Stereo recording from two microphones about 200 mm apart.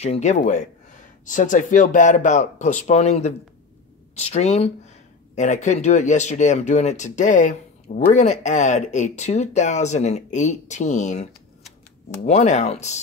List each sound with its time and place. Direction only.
0.0 s speech: 35° left (ahead or behind)
12.3 s speech: 35° left (ahead or behind)